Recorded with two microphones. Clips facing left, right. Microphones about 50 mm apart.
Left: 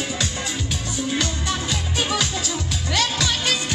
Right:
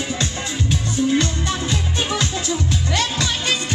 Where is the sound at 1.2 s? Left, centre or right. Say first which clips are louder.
Right 2 dB; right.